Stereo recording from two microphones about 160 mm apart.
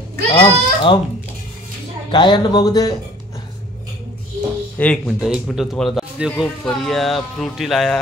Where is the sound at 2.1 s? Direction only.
30° left (ahead or behind).